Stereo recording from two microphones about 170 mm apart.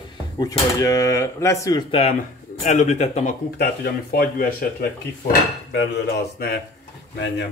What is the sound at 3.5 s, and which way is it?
Speech, 70° left (ahead or behind).